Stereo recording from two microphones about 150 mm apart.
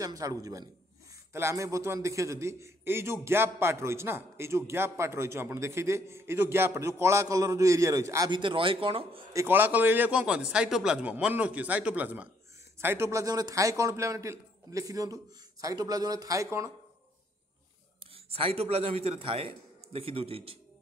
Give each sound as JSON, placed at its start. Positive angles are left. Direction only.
{"t": 0.0, "sound": "a man's voice", "side_deg": -20}
{"t": 8.3, "sound": "speech", "side_deg": -35}
{"t": 9.3, "sound": "a man's voice", "side_deg": -15}
{"t": 18.1, "sound": "a man's voice", "side_deg": -40}